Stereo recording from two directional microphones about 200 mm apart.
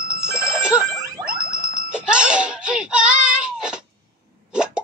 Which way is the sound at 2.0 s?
5° right (ahead or behind).